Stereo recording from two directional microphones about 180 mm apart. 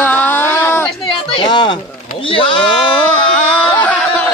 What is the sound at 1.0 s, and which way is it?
Speech, 25° left (ahead or behind).